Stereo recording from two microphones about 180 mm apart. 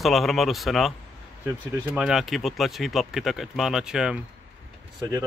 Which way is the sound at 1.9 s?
5° right (ahead or behind).